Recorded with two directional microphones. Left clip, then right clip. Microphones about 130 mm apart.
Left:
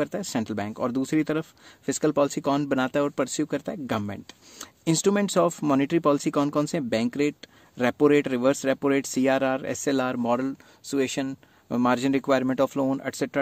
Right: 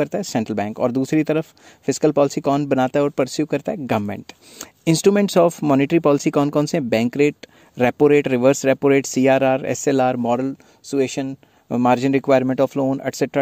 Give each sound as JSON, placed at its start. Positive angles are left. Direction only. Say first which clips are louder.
{"t": 0.0, "sound": "speech", "louder": "right 6 dB", "side_deg": -40}
{"t": 13.0, "sound": "speech", "louder": "right 7 dB", "side_deg": -40}